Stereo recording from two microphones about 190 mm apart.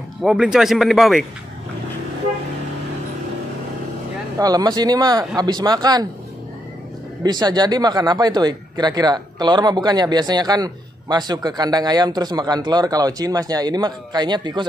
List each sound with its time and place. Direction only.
0.2 s speech: 5° right (ahead or behind)
4.4 s speech: 20° right (ahead or behind)
7.2 s speech: 20° right (ahead or behind)